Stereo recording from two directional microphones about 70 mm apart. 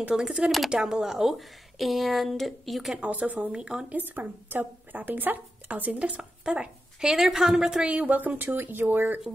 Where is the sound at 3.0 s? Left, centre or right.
Right.